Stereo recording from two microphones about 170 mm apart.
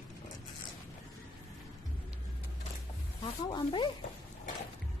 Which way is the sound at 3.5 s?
30° left (ahead or behind).